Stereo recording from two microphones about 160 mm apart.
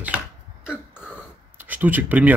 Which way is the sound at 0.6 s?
5° right (ahead or behind).